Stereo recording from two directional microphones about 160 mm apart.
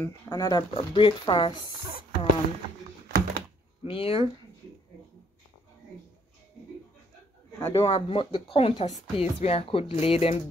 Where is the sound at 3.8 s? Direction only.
35° left (ahead or behind).